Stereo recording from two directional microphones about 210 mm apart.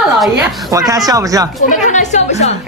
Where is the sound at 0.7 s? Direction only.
15° right (ahead or behind).